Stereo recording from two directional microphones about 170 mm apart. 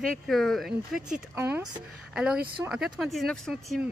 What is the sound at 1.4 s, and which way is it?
Speech, 10° right (ahead or behind).